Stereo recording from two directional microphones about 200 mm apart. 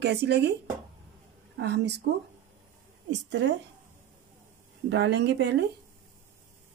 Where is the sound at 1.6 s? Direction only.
60° right (ahead or behind).